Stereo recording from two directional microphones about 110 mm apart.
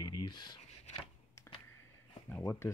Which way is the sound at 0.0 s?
40° left (ahead or behind).